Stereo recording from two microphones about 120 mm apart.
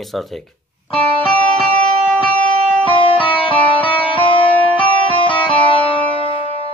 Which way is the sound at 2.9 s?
45° left (ahead or behind).